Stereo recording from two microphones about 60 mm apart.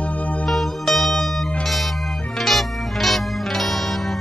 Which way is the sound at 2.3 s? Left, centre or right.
Centre.